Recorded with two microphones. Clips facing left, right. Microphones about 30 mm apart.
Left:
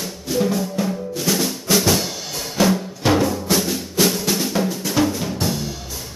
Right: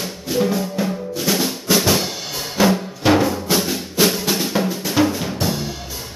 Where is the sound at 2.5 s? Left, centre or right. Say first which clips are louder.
Right 1 dB; centre.